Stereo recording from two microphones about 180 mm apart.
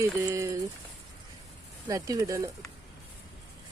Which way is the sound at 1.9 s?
20° right (ahead or behind).